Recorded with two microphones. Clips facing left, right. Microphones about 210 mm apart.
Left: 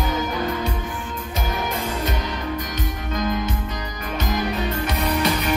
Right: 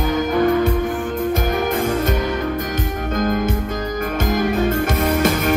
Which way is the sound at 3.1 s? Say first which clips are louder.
Right 5 dB; 50° right (ahead or behind).